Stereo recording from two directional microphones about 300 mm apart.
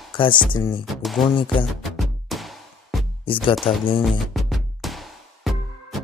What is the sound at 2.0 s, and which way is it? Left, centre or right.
Music, centre.